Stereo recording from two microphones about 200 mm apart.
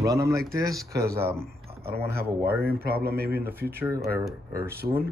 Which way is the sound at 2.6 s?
50° right (ahead or behind).